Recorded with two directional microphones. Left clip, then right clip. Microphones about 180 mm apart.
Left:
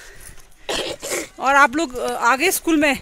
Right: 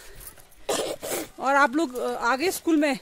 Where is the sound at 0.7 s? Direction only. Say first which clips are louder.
Left 3 dB; 80° right.